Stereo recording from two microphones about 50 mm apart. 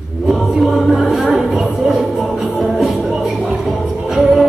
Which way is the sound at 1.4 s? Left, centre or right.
Centre.